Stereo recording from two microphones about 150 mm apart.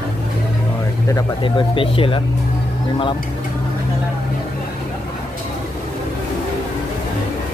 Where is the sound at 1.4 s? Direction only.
35° left (ahead or behind).